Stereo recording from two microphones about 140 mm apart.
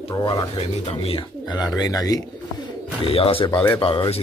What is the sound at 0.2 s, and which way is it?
Speech, 35° left (ahead or behind).